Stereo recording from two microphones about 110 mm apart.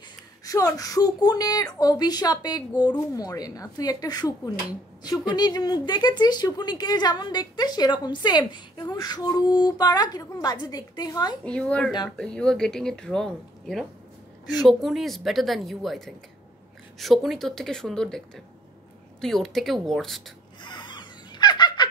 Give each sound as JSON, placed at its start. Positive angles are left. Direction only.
{"t": 0.5, "sound": "a woman's voice", "side_deg": 30}
{"t": 5.3, "sound": "a woman's voice", "side_deg": 35}
{"t": 11.4, "sound": "speech", "side_deg": 10}
{"t": 17.0, "sound": "speech", "side_deg": 0}
{"t": 20.6, "sound": "a sound", "side_deg": 45}